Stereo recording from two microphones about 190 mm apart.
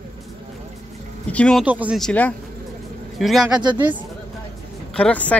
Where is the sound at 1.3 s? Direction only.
5° left (ahead or behind).